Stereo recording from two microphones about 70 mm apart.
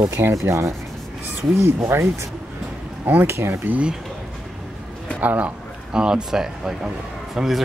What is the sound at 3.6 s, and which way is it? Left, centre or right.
Speech, right.